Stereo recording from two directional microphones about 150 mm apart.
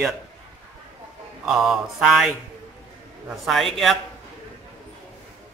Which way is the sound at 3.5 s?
Centre (ahead or behind).